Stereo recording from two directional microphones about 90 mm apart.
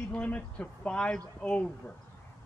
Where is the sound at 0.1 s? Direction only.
15° left (ahead or behind).